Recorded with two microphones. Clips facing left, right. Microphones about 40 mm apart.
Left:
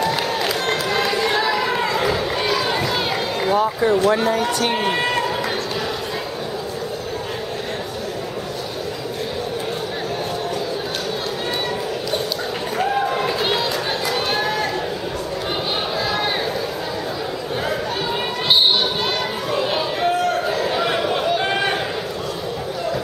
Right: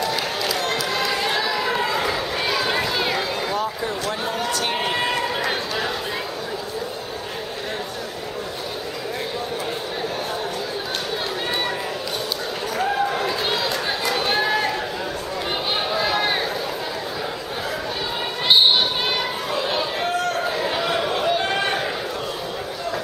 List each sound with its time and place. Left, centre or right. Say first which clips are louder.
0.0 s crowd: left 3 dB; centre
0.8 s a sound: left 3 dB; centre
1.3 s run: left 3 dB; centre
2.9 s run: left 1 dB; centre
3.5 s speech: left 8 dB; left
4.7 s a man's voice: left 3 dB; centre
12.7 s basketball bounce: left 2 dB; centre
14.2 s run: even; centre
16.0 s a sound: right 1 dB; centre
19.5 s a sound: left 3 dB; centre